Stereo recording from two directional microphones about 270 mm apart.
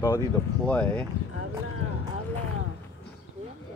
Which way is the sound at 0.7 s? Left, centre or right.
Centre.